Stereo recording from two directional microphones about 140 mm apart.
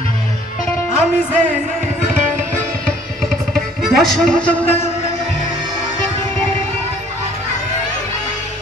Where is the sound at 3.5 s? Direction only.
Centre (ahead or behind).